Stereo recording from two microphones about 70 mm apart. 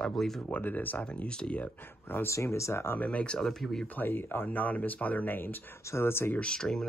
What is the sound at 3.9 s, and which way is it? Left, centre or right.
Speech, left.